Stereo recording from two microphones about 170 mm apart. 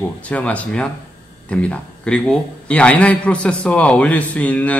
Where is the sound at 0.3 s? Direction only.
10° left (ahead or behind).